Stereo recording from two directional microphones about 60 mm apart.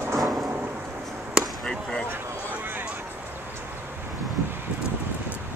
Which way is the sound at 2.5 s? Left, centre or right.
Right.